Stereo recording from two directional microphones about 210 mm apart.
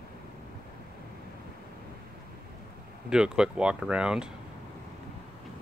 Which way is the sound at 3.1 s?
5° right (ahead or behind).